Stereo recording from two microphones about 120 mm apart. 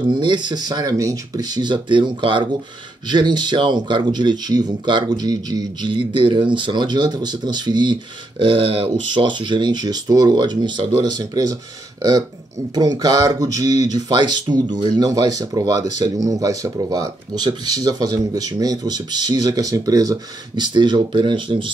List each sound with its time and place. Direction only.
0.0 s speech: 40° right (ahead or behind)
11.0 s speech: 30° right (ahead or behind)
12.7 s speech: 35° right (ahead or behind)